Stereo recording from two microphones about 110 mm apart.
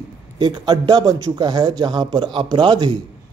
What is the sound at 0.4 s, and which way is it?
A man's voice, 40° right (ahead or behind).